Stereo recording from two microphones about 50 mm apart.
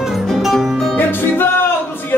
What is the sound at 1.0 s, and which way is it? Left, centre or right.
Music, left.